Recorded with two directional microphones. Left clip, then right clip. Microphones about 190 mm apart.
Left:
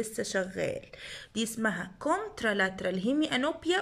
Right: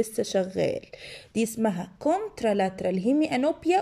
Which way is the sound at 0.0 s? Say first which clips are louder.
Right 6 dB; 15° right (ahead or behind).